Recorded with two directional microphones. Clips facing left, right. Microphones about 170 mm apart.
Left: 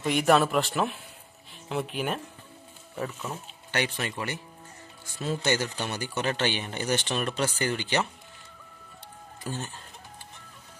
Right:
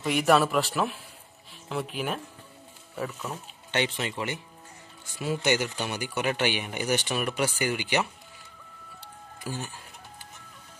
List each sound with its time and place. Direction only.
0.0 s a man's voice: 5° right (ahead or behind)
3.7 s speech: 20° right (ahead or behind)
9.4 s chicken: 10° right (ahead or behind)